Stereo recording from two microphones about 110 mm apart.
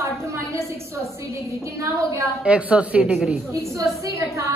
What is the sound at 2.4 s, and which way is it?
Speech, 10° right (ahead or behind).